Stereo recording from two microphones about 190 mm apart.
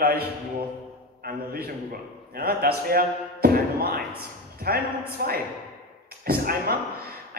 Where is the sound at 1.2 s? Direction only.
55° right (ahead or behind).